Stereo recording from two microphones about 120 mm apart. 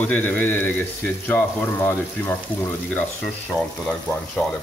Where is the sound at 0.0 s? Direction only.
10° left (ahead or behind).